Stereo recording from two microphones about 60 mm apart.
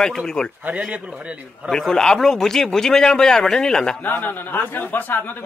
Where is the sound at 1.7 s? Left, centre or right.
Centre.